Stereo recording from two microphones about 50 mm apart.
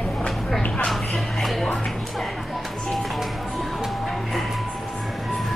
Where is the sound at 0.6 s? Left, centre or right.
Centre.